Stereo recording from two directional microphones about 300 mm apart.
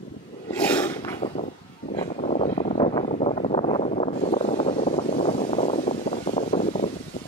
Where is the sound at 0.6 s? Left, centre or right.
Centre.